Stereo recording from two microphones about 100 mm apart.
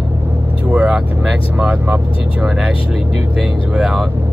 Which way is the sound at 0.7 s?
10° right (ahead or behind).